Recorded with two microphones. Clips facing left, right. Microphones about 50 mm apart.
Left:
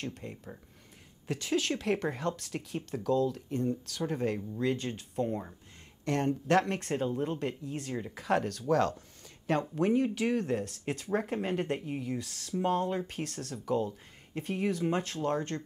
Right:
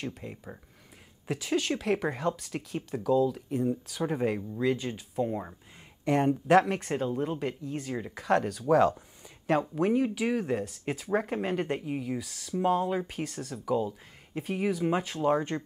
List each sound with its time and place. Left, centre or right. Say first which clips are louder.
0.0 s speech: right 2 dB; centre
4.6 s speech: right 3 dB; centre